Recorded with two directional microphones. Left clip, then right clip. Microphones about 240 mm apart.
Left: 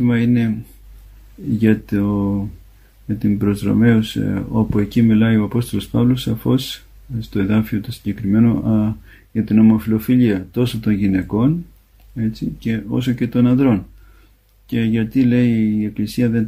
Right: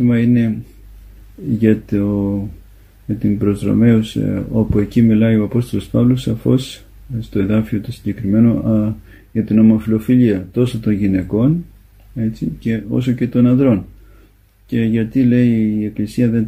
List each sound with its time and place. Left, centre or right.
0.0 s speech: left
1.6 s speech: left